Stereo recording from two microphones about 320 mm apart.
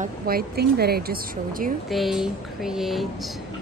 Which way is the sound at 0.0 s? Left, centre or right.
Right.